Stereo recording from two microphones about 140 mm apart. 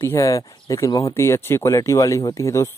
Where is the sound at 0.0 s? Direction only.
20° left (ahead or behind).